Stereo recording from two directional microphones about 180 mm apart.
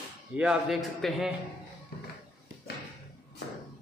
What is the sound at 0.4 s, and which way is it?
Speech, centre (ahead or behind).